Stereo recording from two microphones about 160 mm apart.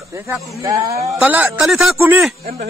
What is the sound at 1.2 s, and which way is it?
Speech, 10° right (ahead or behind).